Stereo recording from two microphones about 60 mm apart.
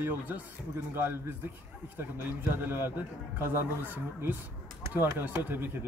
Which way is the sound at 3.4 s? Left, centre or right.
Right.